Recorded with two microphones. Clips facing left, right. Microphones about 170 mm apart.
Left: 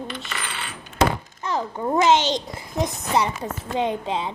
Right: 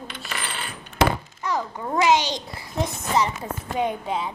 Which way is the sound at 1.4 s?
20° left (ahead or behind).